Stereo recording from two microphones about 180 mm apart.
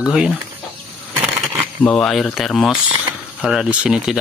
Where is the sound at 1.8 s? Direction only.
5° left (ahead or behind).